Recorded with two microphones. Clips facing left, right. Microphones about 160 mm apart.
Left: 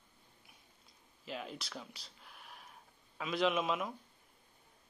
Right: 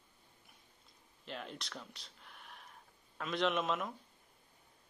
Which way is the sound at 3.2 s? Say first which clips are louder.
Left 1 dB; 5° left (ahead or behind).